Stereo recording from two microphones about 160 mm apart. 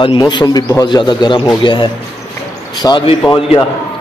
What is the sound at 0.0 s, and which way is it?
Speech, 30° left (ahead or behind).